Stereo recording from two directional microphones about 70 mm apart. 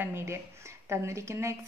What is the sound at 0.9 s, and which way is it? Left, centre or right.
Speech, right.